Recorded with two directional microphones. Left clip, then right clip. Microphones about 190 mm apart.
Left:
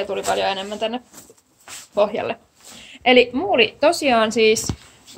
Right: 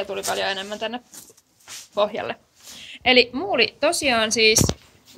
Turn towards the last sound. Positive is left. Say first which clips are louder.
# left 2 dB
turn(degrees=10)  # may be behind; listen again after turning